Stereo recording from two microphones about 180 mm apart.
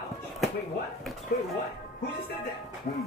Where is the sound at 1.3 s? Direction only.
60° left (ahead or behind).